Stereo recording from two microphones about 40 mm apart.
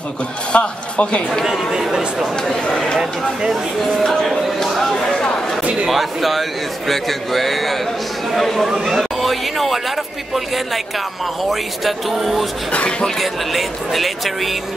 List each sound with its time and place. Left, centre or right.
0.5 s a man's voice: left
1.7 s speech: centre
4.0 s speech: centre
5.1 s a sound: left
5.6 s a sound: right
5.9 s speech: centre
11.8 s speech: centre